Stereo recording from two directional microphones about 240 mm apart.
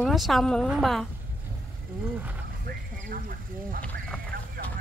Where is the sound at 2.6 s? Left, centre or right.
Right.